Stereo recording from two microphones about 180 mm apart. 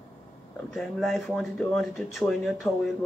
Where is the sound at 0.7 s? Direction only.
Centre (ahead or behind).